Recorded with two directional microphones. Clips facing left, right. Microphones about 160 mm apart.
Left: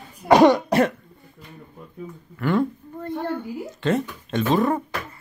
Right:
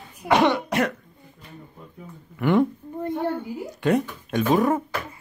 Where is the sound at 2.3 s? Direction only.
20° right (ahead or behind).